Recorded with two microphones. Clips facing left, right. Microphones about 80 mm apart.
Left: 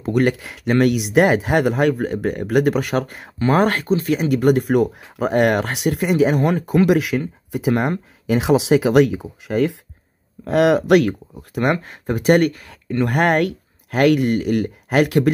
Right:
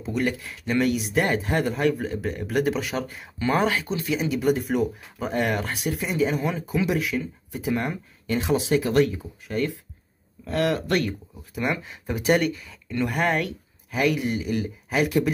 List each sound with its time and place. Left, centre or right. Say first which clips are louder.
0.0 s speech: left 8 dB; left
3.3 s speech: left 6 dB; left
11.5 s speech: left 7 dB; left
13.0 s speech: left 7 dB; left